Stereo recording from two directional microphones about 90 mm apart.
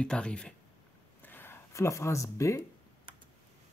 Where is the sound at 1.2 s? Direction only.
25° left (ahead or behind).